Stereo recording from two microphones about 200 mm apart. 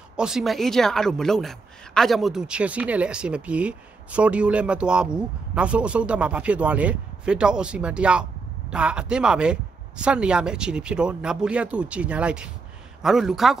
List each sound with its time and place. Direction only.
0.1 s speech: 5° right (ahead or behind)